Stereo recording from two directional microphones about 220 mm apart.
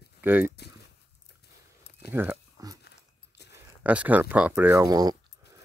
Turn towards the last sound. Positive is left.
turn(degrees=-15)  # may be behind; listen again after turning